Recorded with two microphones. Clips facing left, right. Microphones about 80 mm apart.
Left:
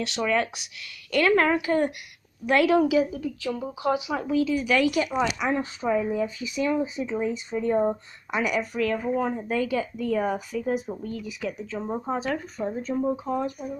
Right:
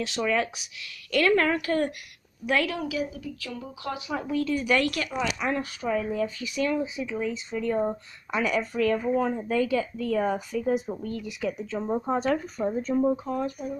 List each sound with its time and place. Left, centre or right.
0.0 s speech: centre
2.7 s a woman's voice: left
4.1 s speech: centre
5.5 s a woman's voice: left; by 13.1 s centre
13.1 s speech: centre